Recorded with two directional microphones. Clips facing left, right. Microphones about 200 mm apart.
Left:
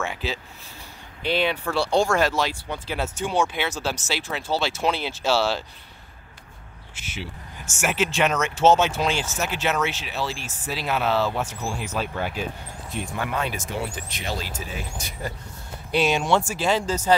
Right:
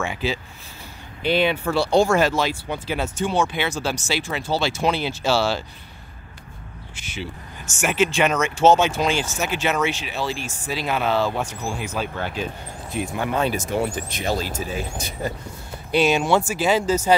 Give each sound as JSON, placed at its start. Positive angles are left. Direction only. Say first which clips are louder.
{"t": 0.0, "sound": "speech", "louder": "right 4 dB", "side_deg": 0}
{"t": 3.2, "sound": "speech", "louder": "right 2 dB", "side_deg": 10}
{"t": 7.1, "sound": "speech", "louder": "right 3 dB", "side_deg": 5}
{"t": 13.3, "sound": "speech", "louder": "right 6 dB", "side_deg": -35}
{"t": 15.0, "sound": "speech", "louder": "right 5 dB", "side_deg": -20}
{"t": 15.9, "sound": "speech", "louder": "right 3 dB", "side_deg": 0}